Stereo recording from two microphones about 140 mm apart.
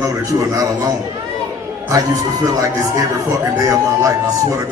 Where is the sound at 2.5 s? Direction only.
25° right (ahead or behind).